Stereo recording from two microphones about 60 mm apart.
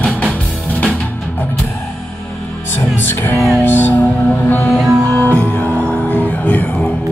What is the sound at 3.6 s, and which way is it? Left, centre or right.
Music, left.